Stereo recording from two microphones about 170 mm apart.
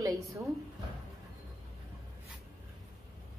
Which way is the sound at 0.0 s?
20° right (ahead or behind).